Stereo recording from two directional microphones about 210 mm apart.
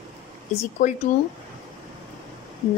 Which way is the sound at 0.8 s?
35° left (ahead or behind).